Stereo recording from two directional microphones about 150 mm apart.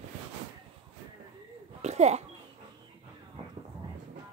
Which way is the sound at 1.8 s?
45° right (ahead or behind).